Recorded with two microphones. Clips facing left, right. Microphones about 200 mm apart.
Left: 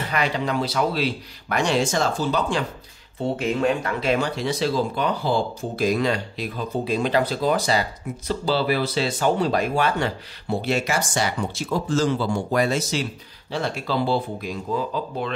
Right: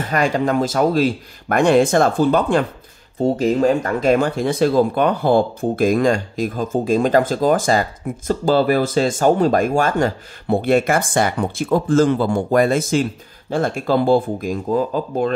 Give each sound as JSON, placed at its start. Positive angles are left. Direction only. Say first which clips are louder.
{"t": 0.0, "sound": "speech", "louder": "right 6 dB", "side_deg": -45}
{"t": 3.2, "sound": "speech", "louder": "right 7 dB", "side_deg": -40}